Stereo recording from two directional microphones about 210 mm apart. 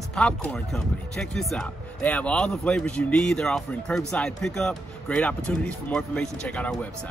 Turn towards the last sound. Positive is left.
turn(degrees=5)  # may be behind; listen again after turning